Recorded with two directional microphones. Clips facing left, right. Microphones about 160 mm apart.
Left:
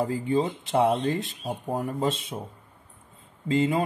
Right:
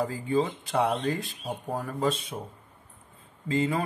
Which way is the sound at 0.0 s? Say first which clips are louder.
Left 2 dB; 25° left (ahead or behind).